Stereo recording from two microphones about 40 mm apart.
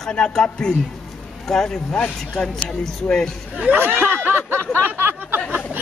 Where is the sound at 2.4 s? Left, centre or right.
Centre.